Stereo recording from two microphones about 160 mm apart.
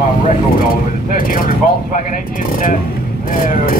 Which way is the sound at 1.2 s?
60° left (ahead or behind).